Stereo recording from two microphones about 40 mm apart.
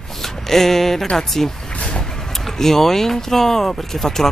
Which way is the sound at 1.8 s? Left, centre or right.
Left.